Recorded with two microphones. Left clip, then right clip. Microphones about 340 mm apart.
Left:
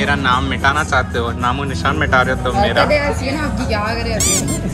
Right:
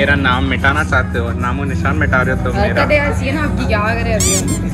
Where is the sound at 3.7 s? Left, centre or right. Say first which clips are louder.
Right 4 dB; left.